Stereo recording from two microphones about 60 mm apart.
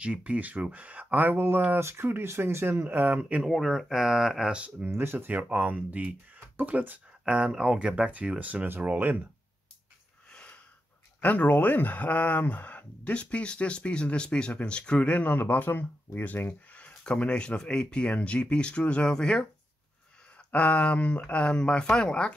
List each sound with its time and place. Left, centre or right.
0.0 s speech: centre
1.8 s speech: right
3.4 s speech: centre
4.8 s speech: right
5.3 s speech: right
7.2 s speech: centre
10.3 s a sound: left
11.1 s speech: left